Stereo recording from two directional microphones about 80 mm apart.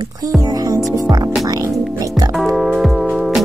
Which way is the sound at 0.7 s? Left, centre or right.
Right.